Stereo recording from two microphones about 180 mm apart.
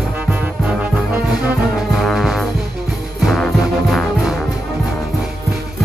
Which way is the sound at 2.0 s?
Centre (ahead or behind).